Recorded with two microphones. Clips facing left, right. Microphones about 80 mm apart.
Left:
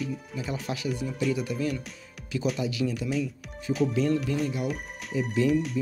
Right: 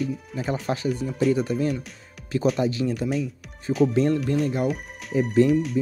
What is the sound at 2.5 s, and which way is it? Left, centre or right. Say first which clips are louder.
Music: right 5 dB; right.